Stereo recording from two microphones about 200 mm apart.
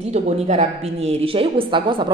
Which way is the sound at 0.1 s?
35° right (ahead or behind).